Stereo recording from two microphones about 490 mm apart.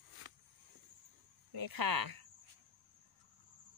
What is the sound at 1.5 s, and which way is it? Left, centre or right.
Speech, right.